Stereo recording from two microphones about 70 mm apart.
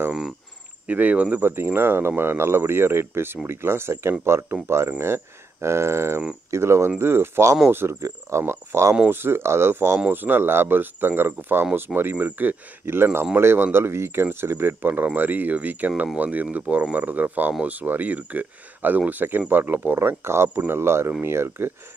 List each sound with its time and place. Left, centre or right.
0.8 s speech: right